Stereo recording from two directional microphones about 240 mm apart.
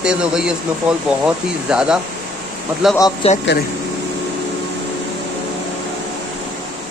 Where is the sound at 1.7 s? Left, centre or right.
Centre.